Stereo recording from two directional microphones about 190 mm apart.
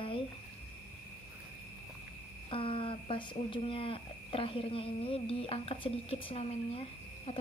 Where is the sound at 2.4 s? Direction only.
25° left (ahead or behind).